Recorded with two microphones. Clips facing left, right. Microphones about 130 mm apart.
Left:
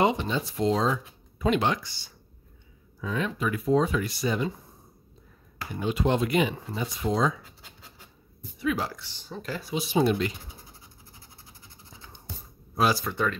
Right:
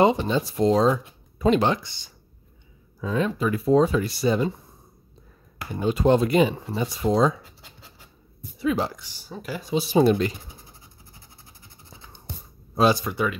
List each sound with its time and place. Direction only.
0.0 s speech: 35° right (ahead or behind)
5.8 s speech: 40° right (ahead or behind)
8.5 s speech: 30° right (ahead or behind)
8.9 s speech: 10° right (ahead or behind)
9.7 s speech: 35° right (ahead or behind)
12.7 s speech: 20° right (ahead or behind)